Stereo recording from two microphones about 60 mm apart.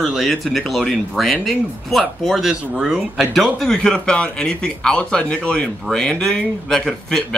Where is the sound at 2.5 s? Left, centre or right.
Centre.